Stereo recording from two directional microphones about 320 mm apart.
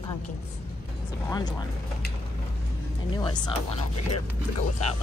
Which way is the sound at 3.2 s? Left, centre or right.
Centre.